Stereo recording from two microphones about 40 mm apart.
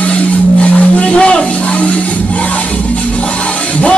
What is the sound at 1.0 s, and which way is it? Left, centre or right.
Music, left.